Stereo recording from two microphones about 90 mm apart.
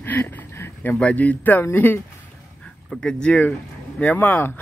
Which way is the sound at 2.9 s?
10° left (ahead or behind).